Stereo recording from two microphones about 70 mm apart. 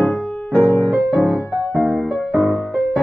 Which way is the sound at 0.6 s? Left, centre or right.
Left.